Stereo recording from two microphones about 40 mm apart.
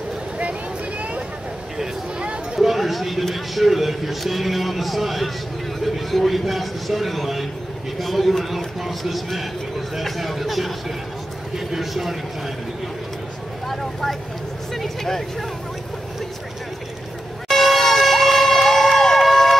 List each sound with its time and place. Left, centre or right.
2.1 s a sound: right
2.6 s speech: centre
14.7 s speech: centre
17.5 s emergency vehicle: centre